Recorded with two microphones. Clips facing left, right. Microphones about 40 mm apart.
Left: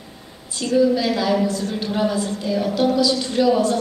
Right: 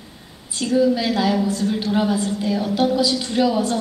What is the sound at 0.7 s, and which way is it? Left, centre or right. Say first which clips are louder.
A woman's voice: left 1 dB; centre.